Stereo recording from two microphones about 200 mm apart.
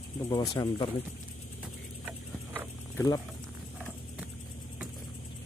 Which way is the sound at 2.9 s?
20° left (ahead or behind).